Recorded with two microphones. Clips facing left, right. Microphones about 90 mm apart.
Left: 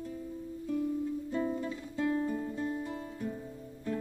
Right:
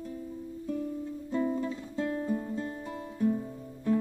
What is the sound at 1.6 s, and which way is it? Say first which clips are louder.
Music: even; 20° right (ahead or behind).